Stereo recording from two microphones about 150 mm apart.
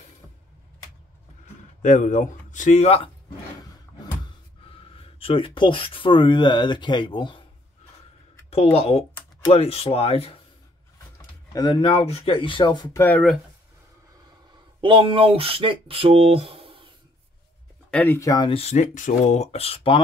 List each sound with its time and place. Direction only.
1.8 s speech: 60° left (ahead or behind)
4.6 s speech: 40° left (ahead or behind)
8.5 s speech: 40° left (ahead or behind)
11.5 s speech: 25° left (ahead or behind)
11.9 s speech: 40° left (ahead or behind)
14.8 s speech: 35° right (ahead or behind)
17.9 s speech: 15° left (ahead or behind)
18.3 s speech: 30° left (ahead or behind)
18.6 s speech: 50° left (ahead or behind)